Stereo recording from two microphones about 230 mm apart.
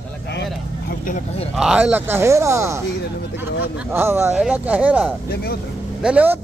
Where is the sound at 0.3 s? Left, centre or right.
Left.